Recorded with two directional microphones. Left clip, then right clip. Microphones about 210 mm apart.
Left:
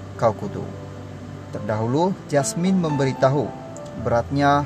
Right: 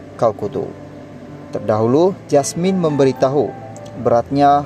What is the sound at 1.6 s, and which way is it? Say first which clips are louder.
Speech: right 8 dB; 25° right (ahead or behind).